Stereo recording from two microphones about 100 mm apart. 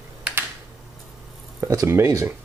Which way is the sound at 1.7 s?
30° right (ahead or behind).